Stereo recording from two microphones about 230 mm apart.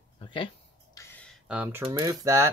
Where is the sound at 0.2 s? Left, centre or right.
Left.